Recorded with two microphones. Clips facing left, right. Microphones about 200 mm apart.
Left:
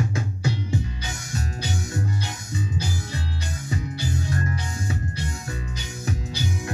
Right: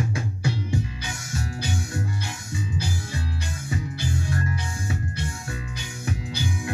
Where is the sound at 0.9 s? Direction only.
40° left (ahead or behind).